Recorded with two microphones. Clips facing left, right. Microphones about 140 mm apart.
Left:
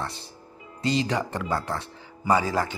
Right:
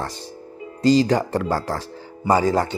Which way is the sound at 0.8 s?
40° right (ahead or behind).